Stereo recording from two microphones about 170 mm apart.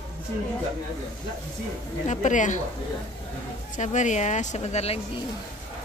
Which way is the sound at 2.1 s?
45° left (ahead or behind).